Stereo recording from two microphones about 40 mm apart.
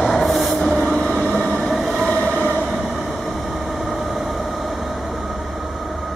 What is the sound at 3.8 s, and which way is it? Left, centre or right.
Vehicle, centre.